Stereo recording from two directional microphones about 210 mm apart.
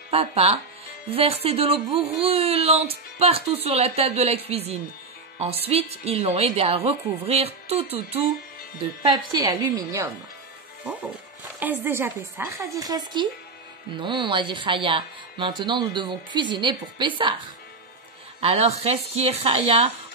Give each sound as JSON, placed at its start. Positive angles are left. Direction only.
{"t": 0.1, "sound": "a woman's voice", "side_deg": -30}
{"t": 11.6, "sound": "a woman's voice", "side_deg": -10}
{"t": 18.4, "sound": "speech", "side_deg": -30}